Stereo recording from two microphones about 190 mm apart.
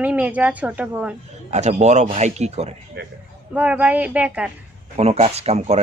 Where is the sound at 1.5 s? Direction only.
35° right (ahead or behind).